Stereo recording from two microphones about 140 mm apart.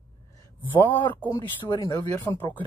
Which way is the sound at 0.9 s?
35° left (ahead or behind).